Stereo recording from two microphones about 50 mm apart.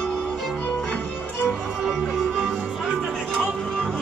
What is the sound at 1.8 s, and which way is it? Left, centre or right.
Music, centre.